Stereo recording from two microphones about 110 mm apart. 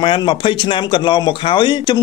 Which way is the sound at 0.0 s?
50° left (ahead or behind).